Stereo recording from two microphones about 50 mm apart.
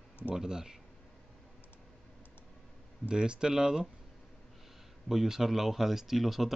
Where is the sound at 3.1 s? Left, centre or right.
Centre.